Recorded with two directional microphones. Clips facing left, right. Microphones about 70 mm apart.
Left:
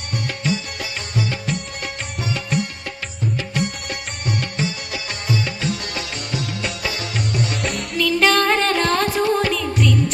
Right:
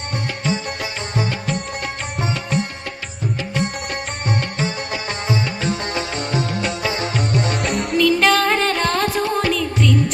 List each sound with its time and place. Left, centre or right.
3.5 s music: right
7.9 s music: centre